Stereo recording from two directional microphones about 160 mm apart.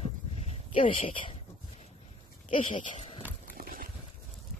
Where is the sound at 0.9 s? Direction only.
30° left (ahead or behind).